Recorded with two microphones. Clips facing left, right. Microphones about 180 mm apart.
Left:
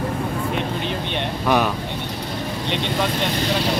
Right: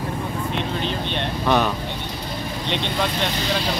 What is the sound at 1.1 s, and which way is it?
Speech, 10° left (ahead or behind).